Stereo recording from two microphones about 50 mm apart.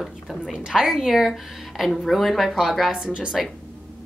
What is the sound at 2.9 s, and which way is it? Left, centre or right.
Speech, centre.